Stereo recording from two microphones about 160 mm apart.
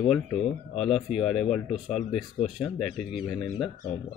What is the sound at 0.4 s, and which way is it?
Speech, centre (ahead or behind).